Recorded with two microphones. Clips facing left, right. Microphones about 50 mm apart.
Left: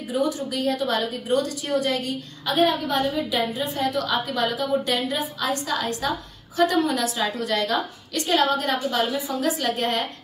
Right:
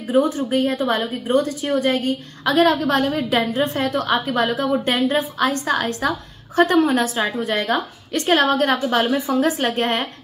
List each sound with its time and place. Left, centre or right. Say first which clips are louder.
0.1 s a woman's voice: right 7 dB; right
2.4 s a woman's voice: right 5 dB; right
3.3 s a woman's voice: right 5 dB; right
9.5 s a woman's voice: right 3 dB; right